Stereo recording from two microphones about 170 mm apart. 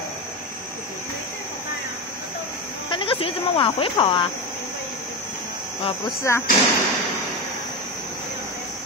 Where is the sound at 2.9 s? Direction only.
30° left (ahead or behind).